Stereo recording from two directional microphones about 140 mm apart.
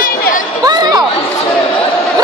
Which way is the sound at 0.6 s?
30° right (ahead or behind).